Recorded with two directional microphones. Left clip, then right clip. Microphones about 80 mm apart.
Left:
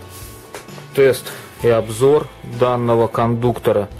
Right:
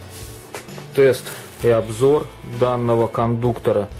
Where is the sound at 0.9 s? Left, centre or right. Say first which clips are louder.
Left 1 dB; left.